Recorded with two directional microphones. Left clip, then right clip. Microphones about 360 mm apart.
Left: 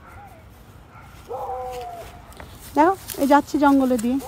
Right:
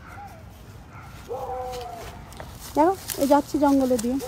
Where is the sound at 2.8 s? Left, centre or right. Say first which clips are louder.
Left 3 dB; left.